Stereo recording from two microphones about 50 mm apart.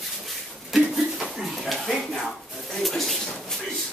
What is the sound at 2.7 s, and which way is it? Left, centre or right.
Speech, centre.